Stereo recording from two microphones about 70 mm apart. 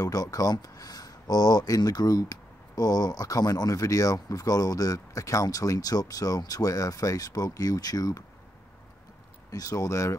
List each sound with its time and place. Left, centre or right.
0.0 s speech: left
9.5 s speech: left